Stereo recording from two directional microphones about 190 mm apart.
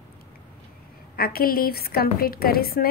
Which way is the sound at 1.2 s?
50° left (ahead or behind).